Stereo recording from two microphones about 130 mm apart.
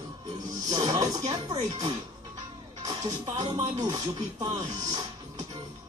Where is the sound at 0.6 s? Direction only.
35° right (ahead or behind).